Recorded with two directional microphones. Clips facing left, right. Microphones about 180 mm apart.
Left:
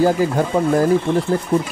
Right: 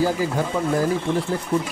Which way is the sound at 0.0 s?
50° left (ahead or behind).